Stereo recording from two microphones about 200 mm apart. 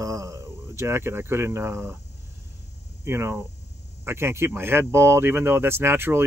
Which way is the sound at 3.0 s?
10° right (ahead or behind).